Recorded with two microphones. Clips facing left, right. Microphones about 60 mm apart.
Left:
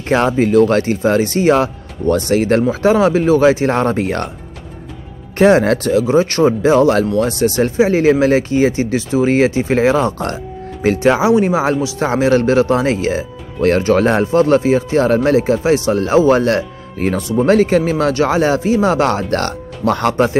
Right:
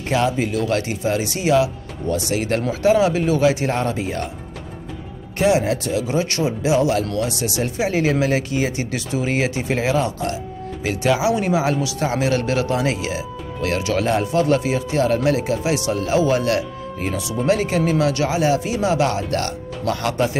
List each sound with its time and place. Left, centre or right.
0.1 s a man's voice: left
4.0 s speech: left
5.4 s speech: left
5.9 s a man's voice: left
7.7 s a man's voice: left